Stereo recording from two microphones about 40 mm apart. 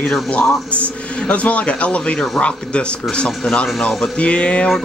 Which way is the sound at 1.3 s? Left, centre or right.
Left.